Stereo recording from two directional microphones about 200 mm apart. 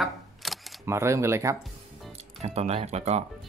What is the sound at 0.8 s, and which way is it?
Speech, 15° right (ahead or behind).